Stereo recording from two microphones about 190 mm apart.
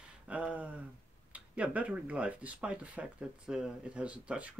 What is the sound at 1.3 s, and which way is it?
Speech, 5° right (ahead or behind).